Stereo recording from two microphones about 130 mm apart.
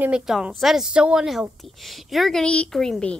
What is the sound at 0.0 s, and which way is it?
A child's voice, 5° right (ahead or behind).